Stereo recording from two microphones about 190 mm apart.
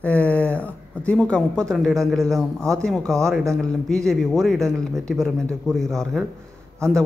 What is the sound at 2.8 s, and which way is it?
A man's voice, 5° left (ahead or behind).